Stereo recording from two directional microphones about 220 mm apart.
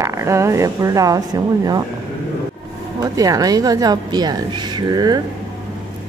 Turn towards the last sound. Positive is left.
turn(degrees=-20)  # may be behind; listen again after turning